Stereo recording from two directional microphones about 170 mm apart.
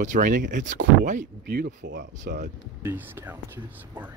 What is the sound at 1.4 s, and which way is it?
Speech, 65° right (ahead or behind).